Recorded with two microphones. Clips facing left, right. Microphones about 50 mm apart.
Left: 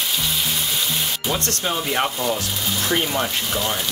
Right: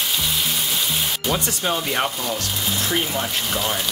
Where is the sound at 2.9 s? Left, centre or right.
Centre.